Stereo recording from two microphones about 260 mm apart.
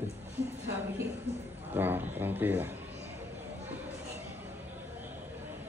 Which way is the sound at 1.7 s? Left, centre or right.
Centre.